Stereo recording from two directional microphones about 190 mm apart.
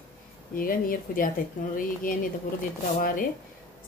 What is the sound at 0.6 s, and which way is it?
Speech, 50° left (ahead or behind).